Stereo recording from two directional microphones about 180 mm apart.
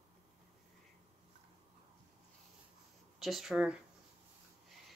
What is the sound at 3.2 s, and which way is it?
Speech, centre (ahead or behind).